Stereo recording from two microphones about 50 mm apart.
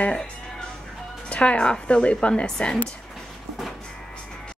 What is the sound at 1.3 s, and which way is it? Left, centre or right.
A woman's voice, left.